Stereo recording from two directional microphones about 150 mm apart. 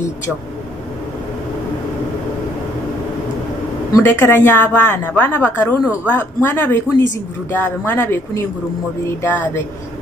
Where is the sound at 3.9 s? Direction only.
15° left (ahead or behind).